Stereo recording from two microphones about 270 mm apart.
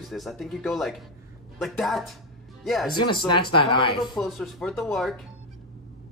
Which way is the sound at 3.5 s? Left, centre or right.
Centre.